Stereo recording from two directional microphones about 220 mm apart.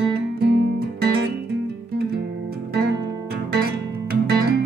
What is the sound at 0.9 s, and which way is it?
Music, 45° right (ahead or behind).